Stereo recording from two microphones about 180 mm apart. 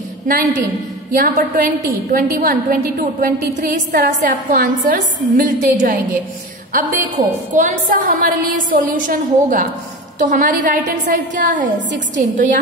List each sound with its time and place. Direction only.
0.3 s a woman's voice: 50° right (ahead or behind)